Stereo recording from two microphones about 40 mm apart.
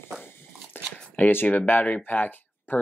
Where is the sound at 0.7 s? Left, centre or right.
Left.